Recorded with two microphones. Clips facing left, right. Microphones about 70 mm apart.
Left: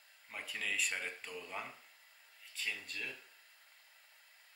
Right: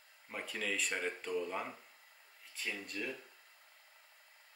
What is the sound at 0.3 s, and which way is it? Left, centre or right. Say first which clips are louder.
Speech: right 2 dB; centre.